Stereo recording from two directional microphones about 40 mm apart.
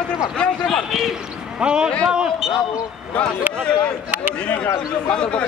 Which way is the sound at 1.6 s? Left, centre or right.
Right.